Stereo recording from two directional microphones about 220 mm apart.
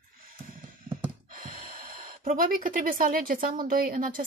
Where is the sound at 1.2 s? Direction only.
40° right (ahead or behind).